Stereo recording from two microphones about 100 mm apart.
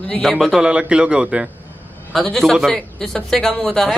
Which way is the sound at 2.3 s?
Centre (ahead or behind).